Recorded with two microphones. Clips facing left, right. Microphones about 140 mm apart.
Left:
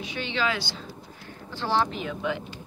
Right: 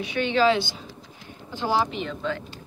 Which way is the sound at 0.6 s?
20° right (ahead or behind).